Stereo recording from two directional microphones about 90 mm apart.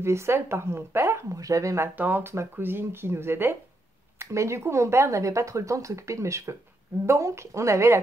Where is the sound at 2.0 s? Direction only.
20° right (ahead or behind).